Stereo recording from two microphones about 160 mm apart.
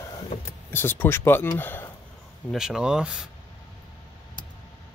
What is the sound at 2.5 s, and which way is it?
Speech, 5° right (ahead or behind).